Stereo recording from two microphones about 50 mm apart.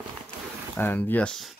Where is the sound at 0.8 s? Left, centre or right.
Left.